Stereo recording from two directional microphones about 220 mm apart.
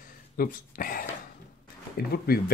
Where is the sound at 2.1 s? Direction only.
45° left (ahead or behind).